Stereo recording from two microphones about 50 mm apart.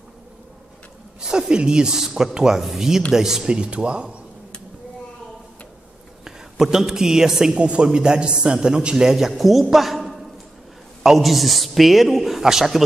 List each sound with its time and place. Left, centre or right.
1.2 s a man's voice: centre
6.2 s a woman's voice: centre
7.5 s a man's voice: right; by 12.8 s centre